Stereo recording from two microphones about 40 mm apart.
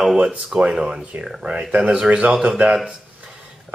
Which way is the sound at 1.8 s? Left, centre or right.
Right.